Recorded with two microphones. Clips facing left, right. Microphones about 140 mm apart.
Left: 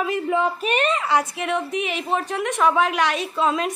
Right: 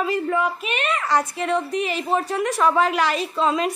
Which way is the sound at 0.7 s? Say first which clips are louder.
Left 4 dB; 40° left (ahead or behind).